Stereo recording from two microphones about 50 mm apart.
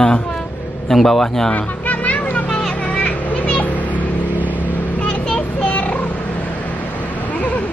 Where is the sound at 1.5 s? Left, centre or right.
Left.